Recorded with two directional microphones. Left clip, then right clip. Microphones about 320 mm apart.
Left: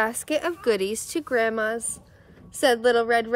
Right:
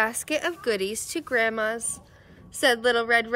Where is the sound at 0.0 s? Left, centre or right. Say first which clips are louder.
Left 1 dB; centre.